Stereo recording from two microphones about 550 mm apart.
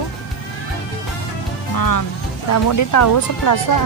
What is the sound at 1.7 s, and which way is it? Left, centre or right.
Speech, left.